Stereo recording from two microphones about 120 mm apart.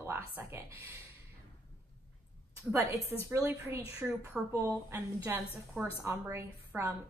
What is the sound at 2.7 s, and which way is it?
A woman's voice, 25° right (ahead or behind).